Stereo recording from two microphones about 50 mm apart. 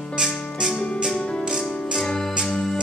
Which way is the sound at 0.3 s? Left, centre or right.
Centre.